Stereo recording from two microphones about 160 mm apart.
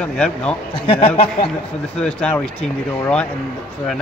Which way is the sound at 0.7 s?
35° left (ahead or behind).